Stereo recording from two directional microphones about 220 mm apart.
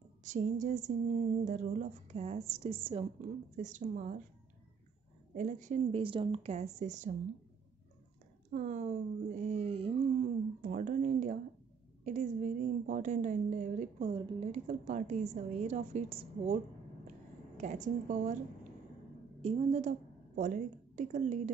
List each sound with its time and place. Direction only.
0.2 s a woman's voice: 35° right (ahead or behind)
5.3 s a woman's voice: 35° right (ahead or behind)
8.5 s a woman's voice: 35° right (ahead or behind)
19.4 s a woman's voice: 30° right (ahead or behind)